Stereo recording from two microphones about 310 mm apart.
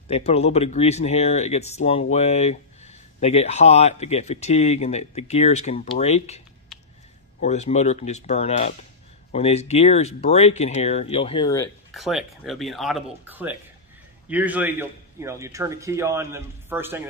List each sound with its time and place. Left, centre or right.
0.1 s speech: left
11.9 s a man's voice: centre